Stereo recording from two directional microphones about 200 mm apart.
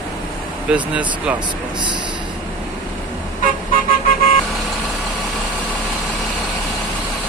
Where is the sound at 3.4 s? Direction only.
45° left (ahead or behind).